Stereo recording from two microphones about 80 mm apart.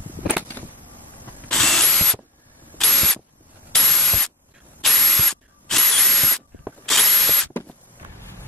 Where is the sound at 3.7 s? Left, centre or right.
Centre.